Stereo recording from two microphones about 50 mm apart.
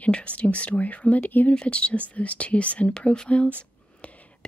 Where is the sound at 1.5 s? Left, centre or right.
Left.